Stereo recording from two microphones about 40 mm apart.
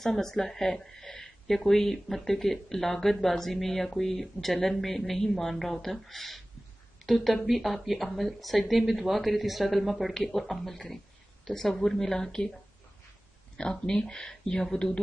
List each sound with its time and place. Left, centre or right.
0.0 s speech: centre
13.6 s speech: centre